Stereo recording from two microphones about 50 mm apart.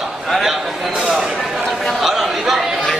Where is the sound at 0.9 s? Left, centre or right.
Centre.